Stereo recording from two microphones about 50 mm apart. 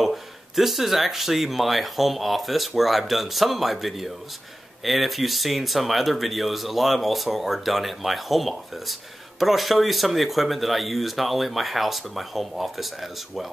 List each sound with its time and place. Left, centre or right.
0.0 s speech: centre